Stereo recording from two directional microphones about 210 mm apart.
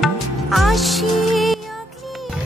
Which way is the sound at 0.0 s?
Centre (ahead or behind).